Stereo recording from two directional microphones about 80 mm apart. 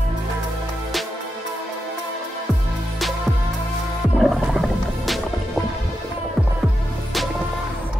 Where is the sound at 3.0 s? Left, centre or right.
Centre.